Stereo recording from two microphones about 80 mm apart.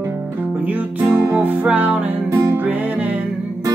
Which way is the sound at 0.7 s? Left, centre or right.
Centre.